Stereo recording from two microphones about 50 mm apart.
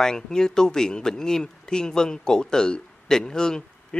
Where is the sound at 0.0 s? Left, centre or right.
Centre.